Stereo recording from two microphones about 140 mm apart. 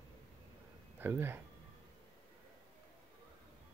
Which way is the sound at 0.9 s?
15° right (ahead or behind).